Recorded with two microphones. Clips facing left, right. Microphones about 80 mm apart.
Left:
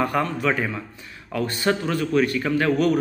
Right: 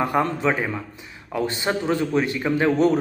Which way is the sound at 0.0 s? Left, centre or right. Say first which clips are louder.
Right 1 dB; right.